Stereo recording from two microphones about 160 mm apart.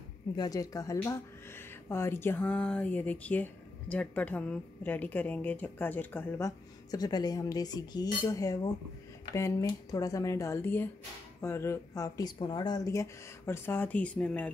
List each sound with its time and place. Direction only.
0.4 s a woman's voice: 20° left (ahead or behind)